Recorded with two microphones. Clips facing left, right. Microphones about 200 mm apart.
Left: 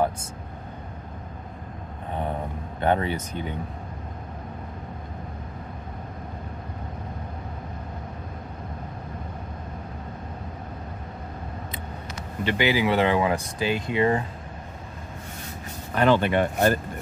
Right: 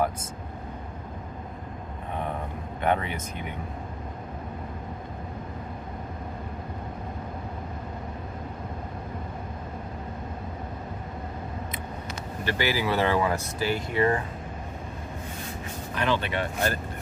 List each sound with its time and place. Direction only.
2.8 s speech: 30° left (ahead or behind)
12.4 s speech: 20° left (ahead or behind)
15.9 s speech: 50° left (ahead or behind)